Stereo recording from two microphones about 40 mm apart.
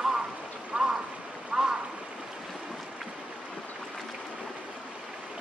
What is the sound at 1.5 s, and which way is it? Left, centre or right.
Stream, right.